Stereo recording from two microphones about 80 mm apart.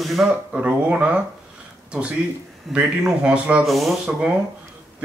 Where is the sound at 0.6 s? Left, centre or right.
Centre.